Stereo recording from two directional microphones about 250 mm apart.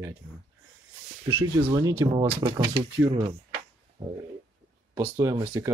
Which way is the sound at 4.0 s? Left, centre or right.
Centre.